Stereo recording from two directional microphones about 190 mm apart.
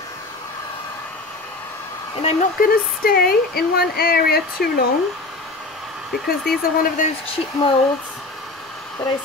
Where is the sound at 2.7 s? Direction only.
55° left (ahead or behind).